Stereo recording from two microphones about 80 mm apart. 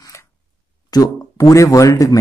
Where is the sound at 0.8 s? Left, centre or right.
Left.